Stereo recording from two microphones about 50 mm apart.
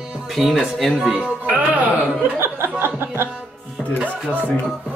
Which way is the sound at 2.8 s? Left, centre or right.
Right.